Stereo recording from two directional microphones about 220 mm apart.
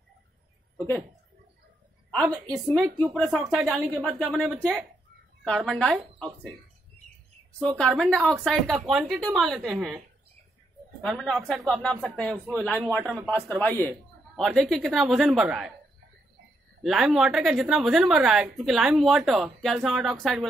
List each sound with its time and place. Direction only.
2.2 s a woman's voice: 15° right (ahead or behind)
2.6 s a woman's voice: 5° right (ahead or behind)
7.5 s a woman's voice: 5° left (ahead or behind)
16.8 s a woman's voice: centre (ahead or behind)